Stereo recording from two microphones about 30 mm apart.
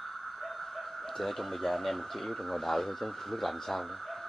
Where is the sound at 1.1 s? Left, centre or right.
Centre.